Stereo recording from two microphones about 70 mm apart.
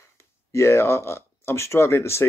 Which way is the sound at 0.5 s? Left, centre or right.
Left.